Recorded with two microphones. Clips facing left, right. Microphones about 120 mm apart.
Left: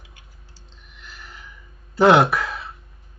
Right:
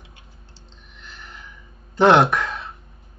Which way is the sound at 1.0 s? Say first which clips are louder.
Right 1 dB; 5° left (ahead or behind).